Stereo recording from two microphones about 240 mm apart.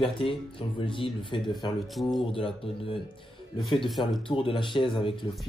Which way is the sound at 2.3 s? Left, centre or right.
Left.